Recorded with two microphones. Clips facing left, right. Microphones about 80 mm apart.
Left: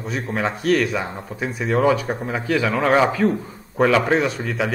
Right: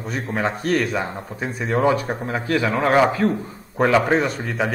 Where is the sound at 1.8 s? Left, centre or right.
Right.